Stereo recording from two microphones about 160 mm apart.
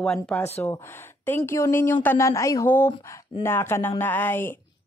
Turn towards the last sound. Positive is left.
turn(degrees=10)  # may be behind; listen again after turning